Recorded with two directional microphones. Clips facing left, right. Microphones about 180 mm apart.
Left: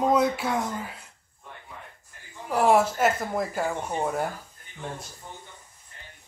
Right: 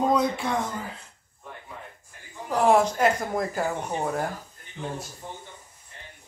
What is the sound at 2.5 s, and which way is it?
Speech, 10° left (ahead or behind).